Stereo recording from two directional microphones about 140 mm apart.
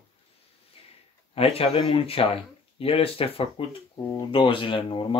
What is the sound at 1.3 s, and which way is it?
Speech, 45° left (ahead or behind).